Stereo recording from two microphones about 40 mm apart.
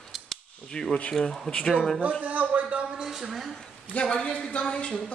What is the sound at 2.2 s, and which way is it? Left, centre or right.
Speech, right.